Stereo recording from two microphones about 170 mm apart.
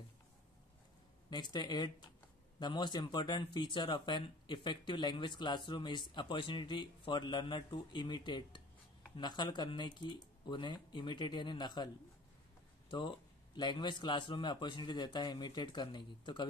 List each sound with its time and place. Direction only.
1.3 s speech: 25° left (ahead or behind)
13.6 s speech: 25° left (ahead or behind)